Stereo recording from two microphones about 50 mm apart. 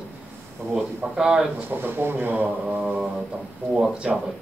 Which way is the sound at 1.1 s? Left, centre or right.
Centre.